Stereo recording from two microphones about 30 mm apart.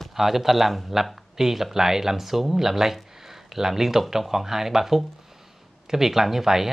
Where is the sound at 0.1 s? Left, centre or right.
Centre.